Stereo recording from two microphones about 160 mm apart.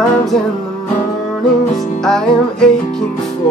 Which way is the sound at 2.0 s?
5° left (ahead or behind).